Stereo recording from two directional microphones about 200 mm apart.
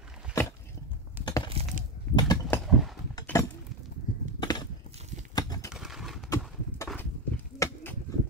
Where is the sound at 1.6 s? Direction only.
30° right (ahead or behind).